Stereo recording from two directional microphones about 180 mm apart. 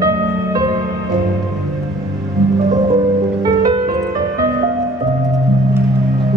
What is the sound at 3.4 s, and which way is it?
Music, 20° right (ahead or behind).